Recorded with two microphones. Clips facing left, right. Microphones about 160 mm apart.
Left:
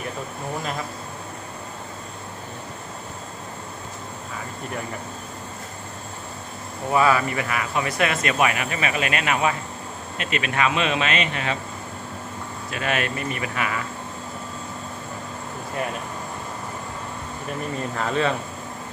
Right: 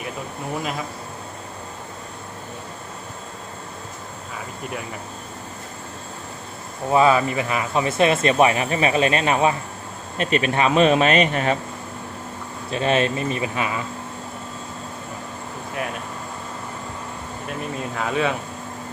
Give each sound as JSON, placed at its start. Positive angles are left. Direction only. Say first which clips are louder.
{"t": 6.9, "sound": "speech", "louder": "right 3 dB", "side_deg": -25}
{"t": 12.7, "sound": "speech", "louder": "right 6 dB", "side_deg": -25}
{"t": 17.9, "sound": "speech", "louder": "right 1 dB", "side_deg": -5}